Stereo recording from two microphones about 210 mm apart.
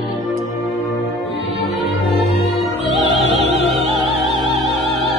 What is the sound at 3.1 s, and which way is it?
Music, 30° right (ahead or behind).